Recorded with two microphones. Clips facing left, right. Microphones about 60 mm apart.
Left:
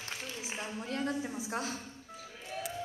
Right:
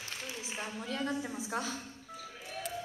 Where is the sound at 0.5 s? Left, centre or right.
Centre.